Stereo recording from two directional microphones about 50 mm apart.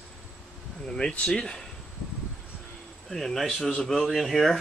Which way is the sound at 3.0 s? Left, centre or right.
Centre.